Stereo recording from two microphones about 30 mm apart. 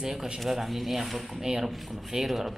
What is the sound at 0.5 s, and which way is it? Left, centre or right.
Speech, centre.